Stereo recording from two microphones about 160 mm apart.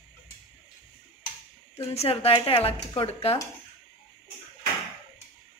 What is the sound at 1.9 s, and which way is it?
Speech, 40° left (ahead or behind).